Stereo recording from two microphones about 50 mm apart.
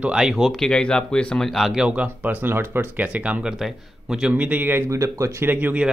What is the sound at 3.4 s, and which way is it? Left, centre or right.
Speech, centre.